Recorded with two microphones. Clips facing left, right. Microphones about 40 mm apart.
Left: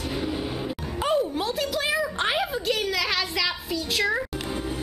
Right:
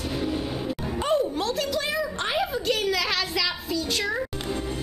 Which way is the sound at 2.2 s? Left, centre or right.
Centre.